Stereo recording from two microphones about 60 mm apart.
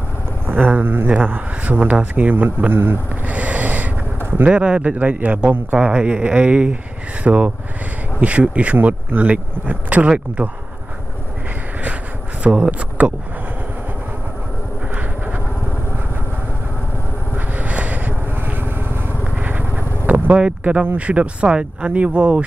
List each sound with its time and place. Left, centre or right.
0.5 s speech: right
3.3 s a sound: right
4.5 s speech: centre
12.4 s speech: right
15.0 s vehicle: right
17.6 s vehicle: right
20.3 s speech: centre